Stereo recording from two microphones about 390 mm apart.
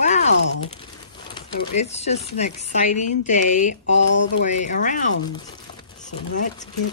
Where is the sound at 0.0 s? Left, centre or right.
Centre.